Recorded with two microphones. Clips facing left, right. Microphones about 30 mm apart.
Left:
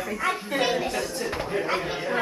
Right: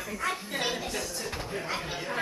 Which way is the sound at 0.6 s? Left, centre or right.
Left.